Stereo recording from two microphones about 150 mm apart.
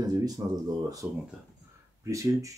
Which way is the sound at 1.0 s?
10° right (ahead or behind).